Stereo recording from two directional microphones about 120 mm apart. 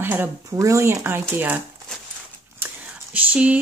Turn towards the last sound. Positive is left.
turn(degrees=-10)  # may be behind; listen again after turning